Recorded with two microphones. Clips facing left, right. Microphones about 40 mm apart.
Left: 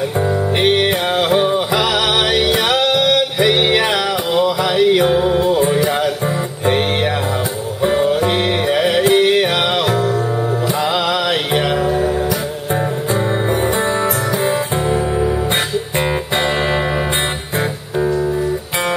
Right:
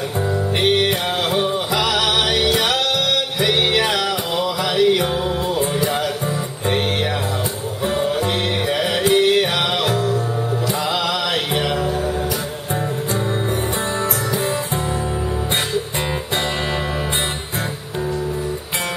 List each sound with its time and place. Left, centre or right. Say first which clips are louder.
0.6 s music: left 2 dB; centre
7.8 s music: left 5 dB; centre
11.5 s music: left 4 dB; centre